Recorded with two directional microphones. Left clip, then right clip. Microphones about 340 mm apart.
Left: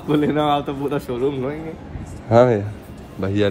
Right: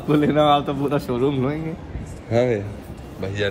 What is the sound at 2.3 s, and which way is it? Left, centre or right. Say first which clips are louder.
Speech: left 6 dB; centre.